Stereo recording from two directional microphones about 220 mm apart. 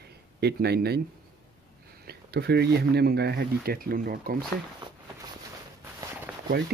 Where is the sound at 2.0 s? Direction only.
50° right (ahead or behind).